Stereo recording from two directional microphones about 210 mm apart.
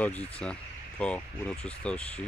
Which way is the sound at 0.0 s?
5° left (ahead or behind).